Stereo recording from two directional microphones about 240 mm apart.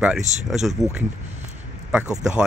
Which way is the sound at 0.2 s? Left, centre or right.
Right.